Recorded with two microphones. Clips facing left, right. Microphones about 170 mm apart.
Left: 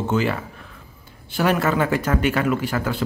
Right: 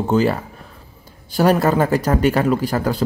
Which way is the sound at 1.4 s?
40° right (ahead or behind).